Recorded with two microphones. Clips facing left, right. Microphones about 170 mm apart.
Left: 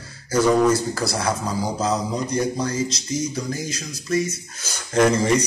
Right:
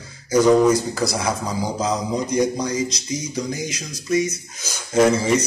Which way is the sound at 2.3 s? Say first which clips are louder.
Right 2 dB; 15° right (ahead or behind).